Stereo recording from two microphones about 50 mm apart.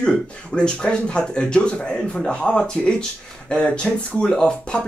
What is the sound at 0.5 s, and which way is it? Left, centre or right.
Speech, centre.